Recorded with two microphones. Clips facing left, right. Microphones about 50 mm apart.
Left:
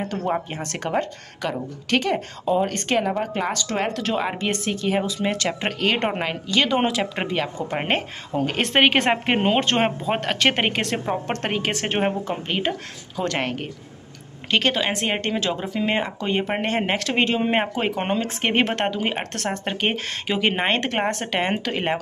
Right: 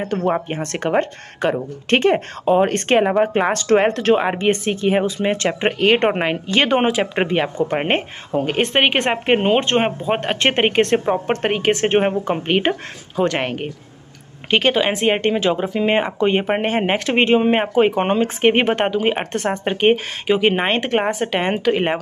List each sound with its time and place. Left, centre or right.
0.1 s speech: right
10.3 s speech: right
12.3 s speech: right
13.1 s speech: right
17.5 s speech: centre